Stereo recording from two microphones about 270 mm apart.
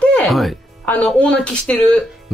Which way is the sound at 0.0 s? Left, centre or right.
Centre.